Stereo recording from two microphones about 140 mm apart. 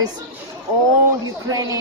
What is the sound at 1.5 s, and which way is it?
Speech, 25° right (ahead or behind).